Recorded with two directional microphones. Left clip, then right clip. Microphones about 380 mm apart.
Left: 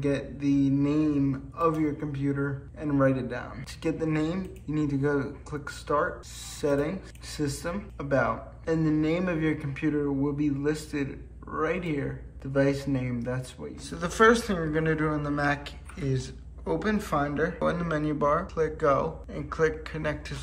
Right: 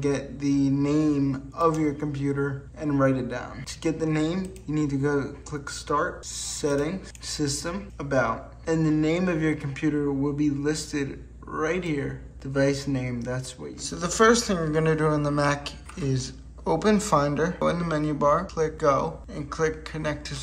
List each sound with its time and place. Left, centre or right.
0.0 s speech: centre